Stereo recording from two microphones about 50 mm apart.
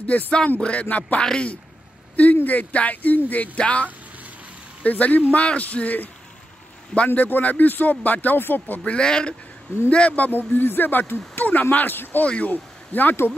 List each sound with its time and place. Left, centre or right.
0.0 s music: left
1.2 s speech: centre
2.3 s speech: left
3.5 s music: left
4.8 s speech: left
7.2 s speech: left
8.8 s music: centre
9.8 s speech: left
13.1 s speech: left